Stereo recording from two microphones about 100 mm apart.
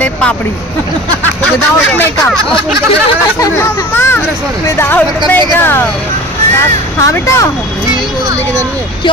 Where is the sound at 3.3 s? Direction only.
35° left (ahead or behind).